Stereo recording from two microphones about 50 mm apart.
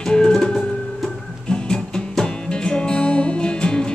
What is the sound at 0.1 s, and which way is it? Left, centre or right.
Music, centre.